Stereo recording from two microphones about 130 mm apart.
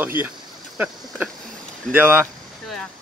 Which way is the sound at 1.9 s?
15° right (ahead or behind).